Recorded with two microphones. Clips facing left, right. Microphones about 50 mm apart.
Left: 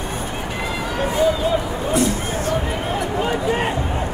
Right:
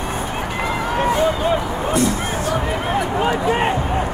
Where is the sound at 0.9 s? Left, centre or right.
Right.